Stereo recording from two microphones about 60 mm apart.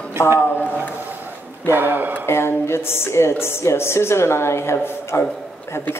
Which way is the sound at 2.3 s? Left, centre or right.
Left.